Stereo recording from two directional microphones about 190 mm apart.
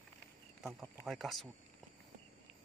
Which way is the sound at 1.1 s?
Centre (ahead or behind).